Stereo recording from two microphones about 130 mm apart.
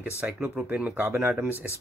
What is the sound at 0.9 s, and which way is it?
Speech, 20° right (ahead or behind).